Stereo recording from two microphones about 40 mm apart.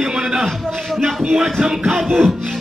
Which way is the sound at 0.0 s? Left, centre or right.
Centre.